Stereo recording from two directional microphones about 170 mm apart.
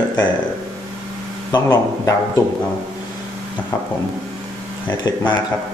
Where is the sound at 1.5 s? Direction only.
25° left (ahead or behind).